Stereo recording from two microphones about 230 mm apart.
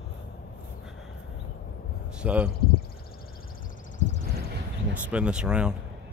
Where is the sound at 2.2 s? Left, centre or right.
Centre.